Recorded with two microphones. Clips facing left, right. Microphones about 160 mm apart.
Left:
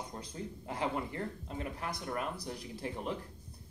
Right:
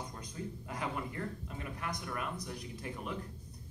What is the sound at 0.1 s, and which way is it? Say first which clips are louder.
Speech: left 1 dB; 30° left (ahead or behind).